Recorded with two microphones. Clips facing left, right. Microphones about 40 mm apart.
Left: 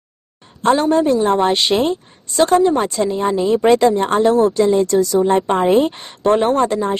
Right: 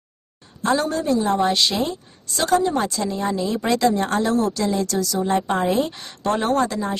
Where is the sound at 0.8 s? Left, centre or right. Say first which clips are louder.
Left 7 dB; left.